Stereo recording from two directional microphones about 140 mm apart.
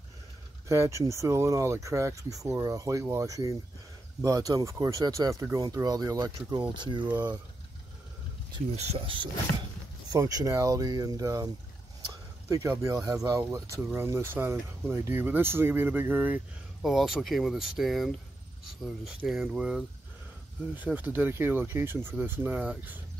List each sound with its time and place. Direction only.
0.7 s speech: 20° right (ahead or behind)
8.7 s speech: 50° right (ahead or behind)
9.1 s speech: 35° right (ahead or behind)
10.1 s speech: 25° right (ahead or behind)
12.6 s speech: 20° right (ahead or behind)
16.8 s speech: 5° right (ahead or behind)